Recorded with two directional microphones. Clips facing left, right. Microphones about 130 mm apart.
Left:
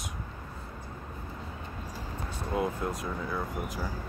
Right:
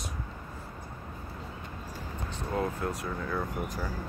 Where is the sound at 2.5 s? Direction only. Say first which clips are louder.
Left 1 dB; 15° left (ahead or behind).